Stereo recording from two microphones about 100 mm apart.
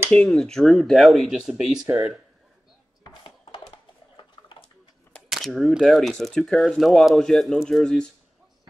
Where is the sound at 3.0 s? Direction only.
50° left (ahead or behind).